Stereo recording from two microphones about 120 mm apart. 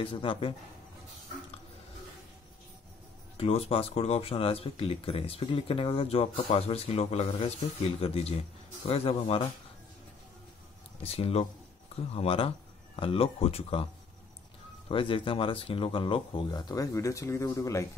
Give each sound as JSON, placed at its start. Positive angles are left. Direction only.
{"t": 0.0, "sound": "speech", "side_deg": 45}
{"t": 3.3, "sound": "speech", "side_deg": 55}
{"t": 11.0, "sound": "speech", "side_deg": 55}
{"t": 14.9, "sound": "speech", "side_deg": 45}